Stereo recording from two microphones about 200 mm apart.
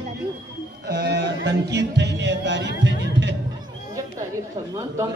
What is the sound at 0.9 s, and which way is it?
Music, 55° right (ahead or behind).